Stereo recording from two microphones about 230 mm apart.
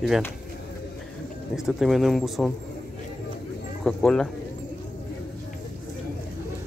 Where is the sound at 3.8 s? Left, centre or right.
Centre.